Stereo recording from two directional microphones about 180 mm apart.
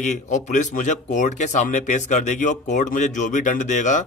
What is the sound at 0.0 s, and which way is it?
A man's voice, 40° left (ahead or behind).